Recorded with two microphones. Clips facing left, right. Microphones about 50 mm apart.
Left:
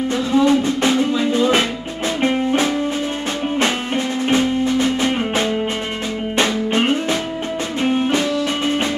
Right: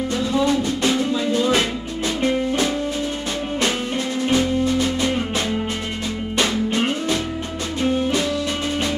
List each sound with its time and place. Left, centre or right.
0.3 s music: left